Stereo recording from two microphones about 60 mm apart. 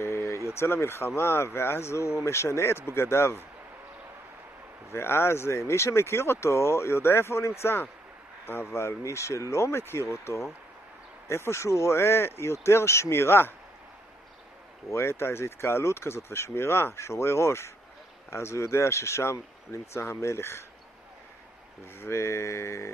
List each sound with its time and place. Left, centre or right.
0.0 s a sound: left
0.5 s speech: left
4.9 s speech: left
14.9 s speech: left
22.0 s speech: left